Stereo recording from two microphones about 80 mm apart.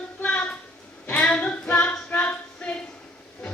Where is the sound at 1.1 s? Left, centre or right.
Centre.